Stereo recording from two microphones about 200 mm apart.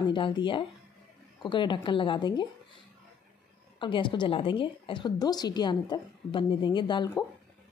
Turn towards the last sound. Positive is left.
turn(degrees=25)  # may be behind; listen again after turning